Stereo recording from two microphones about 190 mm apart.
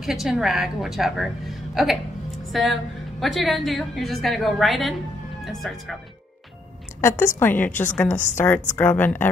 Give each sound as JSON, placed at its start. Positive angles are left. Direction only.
{"t": 0.0, "sound": "a woman's voice", "side_deg": 0}
{"t": 7.0, "sound": "a woman's voice", "side_deg": 15}
{"t": 7.7, "sound": "a woman's voice", "side_deg": 40}
{"t": 8.4, "sound": "a woman's voice", "side_deg": 10}